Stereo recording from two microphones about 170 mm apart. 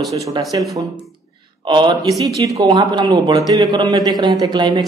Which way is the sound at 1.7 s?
25° right (ahead or behind).